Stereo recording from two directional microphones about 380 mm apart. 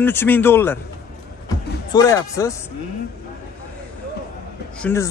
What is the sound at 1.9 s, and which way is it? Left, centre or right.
Speech, centre.